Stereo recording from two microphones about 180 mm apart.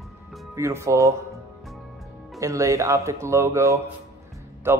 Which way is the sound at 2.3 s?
15° right (ahead or behind).